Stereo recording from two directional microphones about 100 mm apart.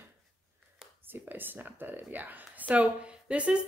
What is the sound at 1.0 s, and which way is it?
A woman's voice, 20° right (ahead or behind).